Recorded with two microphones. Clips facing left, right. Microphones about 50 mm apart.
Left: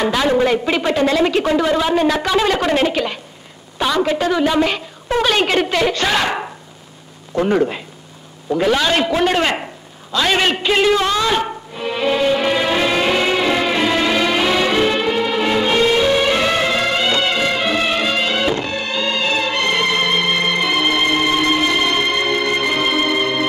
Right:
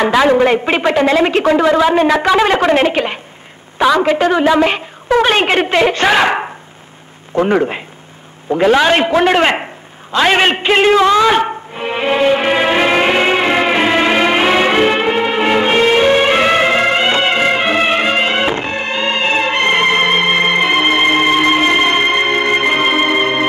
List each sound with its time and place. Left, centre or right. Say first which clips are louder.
0.0 s a sound: right 6 dB; right
0.4 s a woman's voice: right 4 dB; right
1.8 s a woman's voice: right 5 dB; right
11.0 s a man's voice: right 8 dB; centre
11.2 s music: right 6 dB; right